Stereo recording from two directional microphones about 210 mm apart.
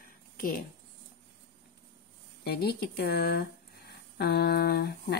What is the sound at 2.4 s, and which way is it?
Speech, 50° left (ahead or behind).